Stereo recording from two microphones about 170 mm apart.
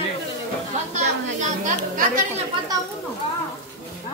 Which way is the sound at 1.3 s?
45° right (ahead or behind).